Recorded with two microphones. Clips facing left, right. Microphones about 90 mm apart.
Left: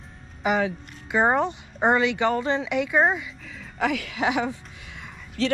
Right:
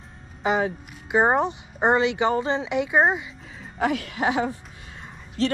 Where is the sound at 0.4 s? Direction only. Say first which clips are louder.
Even; 25° right (ahead or behind).